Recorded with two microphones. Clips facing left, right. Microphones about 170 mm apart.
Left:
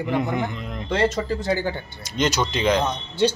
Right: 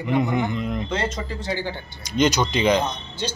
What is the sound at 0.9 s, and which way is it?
Speech, 40° left (ahead or behind).